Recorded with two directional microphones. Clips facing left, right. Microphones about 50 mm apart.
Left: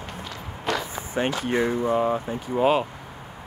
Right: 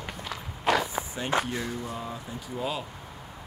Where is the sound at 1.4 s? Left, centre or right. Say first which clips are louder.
Left 10 dB; left.